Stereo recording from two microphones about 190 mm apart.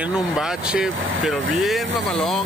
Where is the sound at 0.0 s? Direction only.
5° right (ahead or behind).